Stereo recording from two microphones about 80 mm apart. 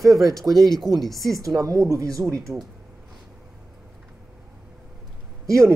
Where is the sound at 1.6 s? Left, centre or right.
Right.